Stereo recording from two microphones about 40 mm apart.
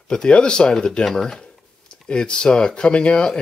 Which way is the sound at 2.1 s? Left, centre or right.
Left.